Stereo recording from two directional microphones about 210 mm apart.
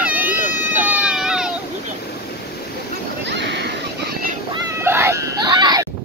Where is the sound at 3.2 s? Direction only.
55° right (ahead or behind).